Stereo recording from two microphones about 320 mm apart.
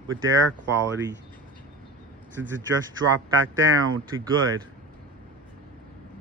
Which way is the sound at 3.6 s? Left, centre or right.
Right.